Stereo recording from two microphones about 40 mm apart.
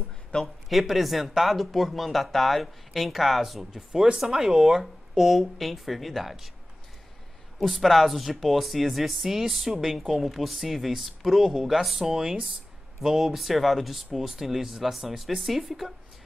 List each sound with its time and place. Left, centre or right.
0.3 s speech: left
0.7 s speech: centre
3.9 s speech: centre
5.2 s speech: centre
7.5 s speech: centre